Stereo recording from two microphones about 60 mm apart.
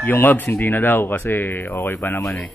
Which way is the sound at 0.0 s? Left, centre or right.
Left.